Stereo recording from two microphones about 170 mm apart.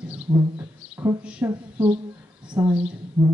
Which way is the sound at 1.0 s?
10° right (ahead or behind).